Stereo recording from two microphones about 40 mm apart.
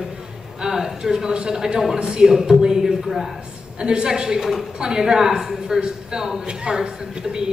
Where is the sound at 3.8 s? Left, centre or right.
Centre.